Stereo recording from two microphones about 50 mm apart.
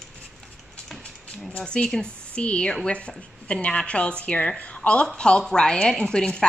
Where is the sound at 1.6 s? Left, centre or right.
Centre.